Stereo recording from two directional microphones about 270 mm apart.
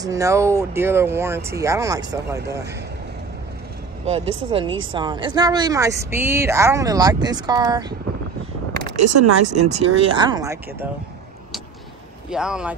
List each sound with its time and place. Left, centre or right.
0.0 s speech: centre
4.0 s speech: right
9.0 s speech: right
9.7 s speech: right
12.3 s speech: centre